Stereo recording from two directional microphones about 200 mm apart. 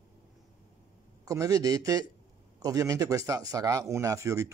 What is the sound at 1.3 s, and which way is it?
Speech, 15° right (ahead or behind).